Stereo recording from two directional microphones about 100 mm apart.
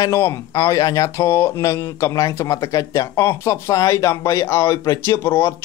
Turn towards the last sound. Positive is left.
turn(degrees=25)  # may be behind; listen again after turning